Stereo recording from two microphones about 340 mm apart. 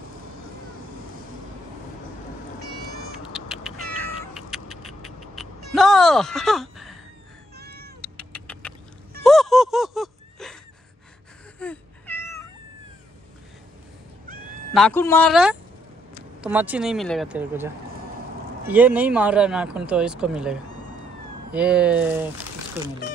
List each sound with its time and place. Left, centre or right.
3.3 s cat: centre
4.2 s music: centre
5.7 s speech: centre
7.5 s cat: right
8.0 s cat: centre
9.2 s a sound: centre
11.6 s cat: centre
14.7 s speech: centre
18.7 s speech: centre
21.5 s speech: centre